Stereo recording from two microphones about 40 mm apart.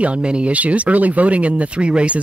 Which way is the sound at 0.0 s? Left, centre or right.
Right.